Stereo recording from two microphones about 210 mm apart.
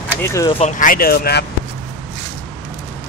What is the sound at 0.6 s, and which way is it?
Speech, 35° left (ahead or behind).